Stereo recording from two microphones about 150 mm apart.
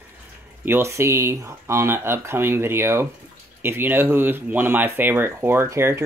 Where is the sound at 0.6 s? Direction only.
15° right (ahead or behind).